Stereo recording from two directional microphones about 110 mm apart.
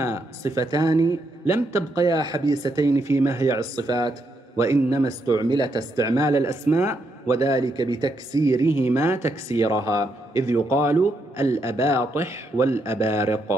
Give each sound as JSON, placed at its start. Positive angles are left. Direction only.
{"t": 0.0, "sound": "speech", "side_deg": -25}